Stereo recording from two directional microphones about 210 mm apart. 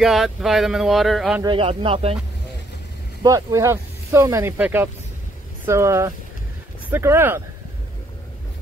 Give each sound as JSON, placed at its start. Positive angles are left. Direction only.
{"t": 0.0, "sound": "speech", "side_deg": 0}
{"t": 1.4, "sound": "speech", "side_deg": -25}
{"t": 3.2, "sound": "speech", "side_deg": -15}